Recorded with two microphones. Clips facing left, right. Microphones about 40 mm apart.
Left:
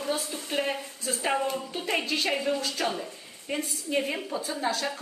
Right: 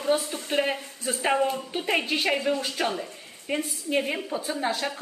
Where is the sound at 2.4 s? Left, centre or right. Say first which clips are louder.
Right 2 dB; centre.